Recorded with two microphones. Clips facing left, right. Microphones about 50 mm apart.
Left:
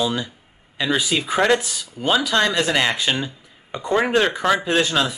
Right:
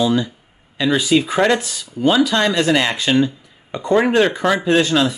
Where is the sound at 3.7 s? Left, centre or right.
Centre.